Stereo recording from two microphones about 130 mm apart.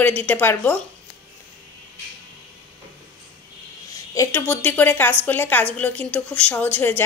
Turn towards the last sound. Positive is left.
turn(degrees=15)  # may be behind; listen again after turning